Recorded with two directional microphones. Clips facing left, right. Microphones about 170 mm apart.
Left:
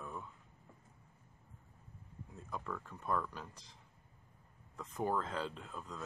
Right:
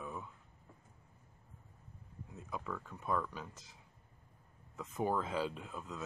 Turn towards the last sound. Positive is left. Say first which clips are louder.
# right 2 dB
turn(degrees=-5)  # may be behind; listen again after turning